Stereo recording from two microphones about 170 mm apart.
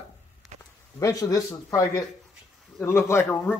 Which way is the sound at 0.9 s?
20° left (ahead or behind).